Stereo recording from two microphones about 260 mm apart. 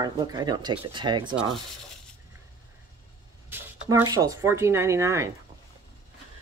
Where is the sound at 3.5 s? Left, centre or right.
Centre.